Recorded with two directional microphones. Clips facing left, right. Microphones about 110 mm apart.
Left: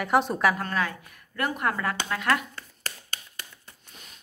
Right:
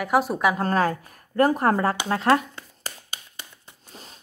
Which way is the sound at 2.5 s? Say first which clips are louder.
Right 1 dB; 15° right (ahead or behind).